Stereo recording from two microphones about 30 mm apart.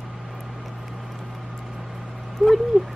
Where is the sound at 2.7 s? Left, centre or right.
Left.